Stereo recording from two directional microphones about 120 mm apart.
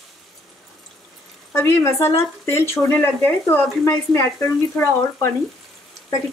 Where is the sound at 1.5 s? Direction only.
20° left (ahead or behind).